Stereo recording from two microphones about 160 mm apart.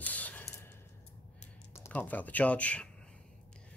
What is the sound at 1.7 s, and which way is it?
Speech, 15° left (ahead or behind).